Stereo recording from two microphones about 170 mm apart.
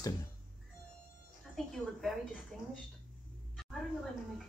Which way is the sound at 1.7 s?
Centre (ahead or behind).